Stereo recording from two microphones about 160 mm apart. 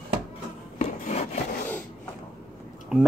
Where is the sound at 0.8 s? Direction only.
45° left (ahead or behind).